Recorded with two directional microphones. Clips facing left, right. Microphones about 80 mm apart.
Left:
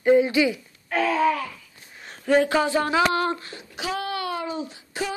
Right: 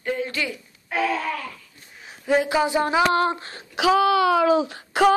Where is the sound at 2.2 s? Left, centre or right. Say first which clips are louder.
Left 1 dB; centre.